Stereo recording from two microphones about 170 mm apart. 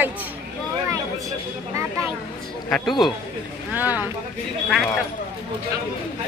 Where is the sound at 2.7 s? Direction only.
Centre (ahead or behind).